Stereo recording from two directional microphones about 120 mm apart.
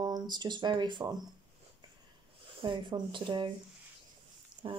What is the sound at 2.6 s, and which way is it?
Speech, 40° right (ahead or behind).